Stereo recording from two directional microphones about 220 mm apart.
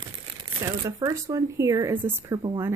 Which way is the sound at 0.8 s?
15° right (ahead or behind).